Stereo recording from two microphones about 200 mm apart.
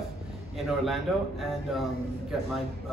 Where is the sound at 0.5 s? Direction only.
Centre (ahead or behind).